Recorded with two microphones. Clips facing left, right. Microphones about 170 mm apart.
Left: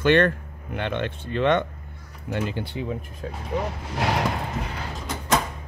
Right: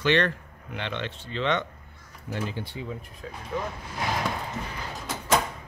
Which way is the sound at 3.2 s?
45° left (ahead or behind).